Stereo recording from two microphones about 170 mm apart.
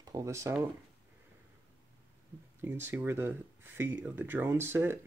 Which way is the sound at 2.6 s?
15° right (ahead or behind).